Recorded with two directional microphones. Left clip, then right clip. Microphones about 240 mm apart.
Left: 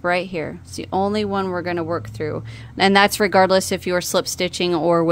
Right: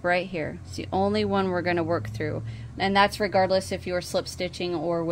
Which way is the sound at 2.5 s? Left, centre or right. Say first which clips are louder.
Left 7 dB; left.